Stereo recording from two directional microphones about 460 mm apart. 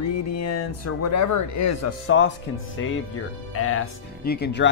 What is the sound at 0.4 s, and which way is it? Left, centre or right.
Speech, left.